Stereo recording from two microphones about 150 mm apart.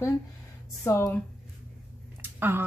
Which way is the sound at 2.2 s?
15° right (ahead or behind).